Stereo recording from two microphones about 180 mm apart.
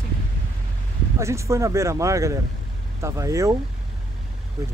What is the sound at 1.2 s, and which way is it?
Speech, 15° right (ahead or behind).